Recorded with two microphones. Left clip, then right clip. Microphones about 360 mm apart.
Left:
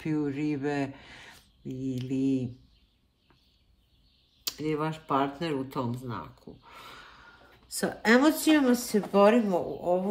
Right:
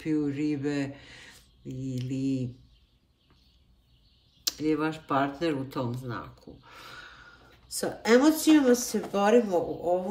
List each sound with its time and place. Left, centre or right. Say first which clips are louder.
0.0 s speech: right 2 dB; centre
4.5 s speech: right 3 dB; centre